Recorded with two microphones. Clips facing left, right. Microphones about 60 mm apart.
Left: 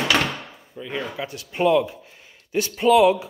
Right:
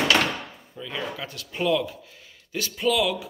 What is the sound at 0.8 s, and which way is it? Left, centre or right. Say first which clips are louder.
Speech: left 3 dB; left.